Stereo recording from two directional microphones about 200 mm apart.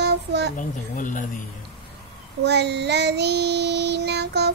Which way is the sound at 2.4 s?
60° right (ahead or behind).